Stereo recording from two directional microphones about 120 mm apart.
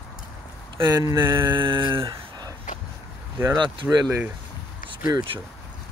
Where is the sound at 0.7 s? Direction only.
35° right (ahead or behind).